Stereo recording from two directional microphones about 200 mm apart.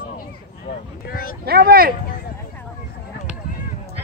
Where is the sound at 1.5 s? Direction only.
50° right (ahead or behind).